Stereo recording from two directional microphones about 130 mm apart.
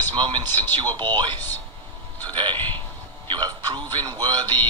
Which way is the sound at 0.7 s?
35° right (ahead or behind).